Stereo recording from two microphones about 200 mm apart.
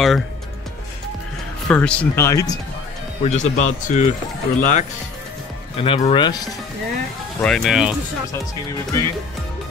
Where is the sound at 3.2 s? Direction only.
35° left (ahead or behind).